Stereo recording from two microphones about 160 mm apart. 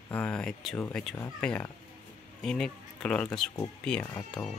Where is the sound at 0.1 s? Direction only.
5° left (ahead or behind).